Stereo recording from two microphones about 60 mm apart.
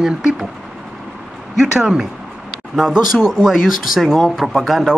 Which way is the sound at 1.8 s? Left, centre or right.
Centre.